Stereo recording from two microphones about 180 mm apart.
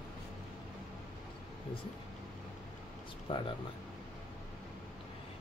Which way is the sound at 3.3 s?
30° left (ahead or behind).